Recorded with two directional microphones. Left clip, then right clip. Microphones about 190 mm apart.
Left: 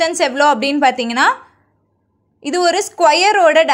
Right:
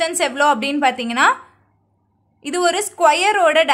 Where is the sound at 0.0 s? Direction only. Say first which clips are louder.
Left 3 dB; 15° left (ahead or behind).